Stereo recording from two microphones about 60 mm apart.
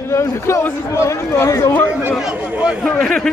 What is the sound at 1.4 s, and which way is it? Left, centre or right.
Speech, left.